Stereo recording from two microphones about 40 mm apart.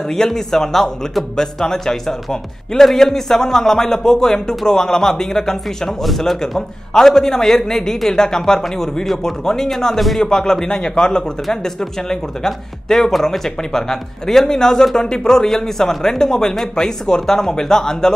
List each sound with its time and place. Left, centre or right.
0.1 s speech: centre
11.4 s speech: centre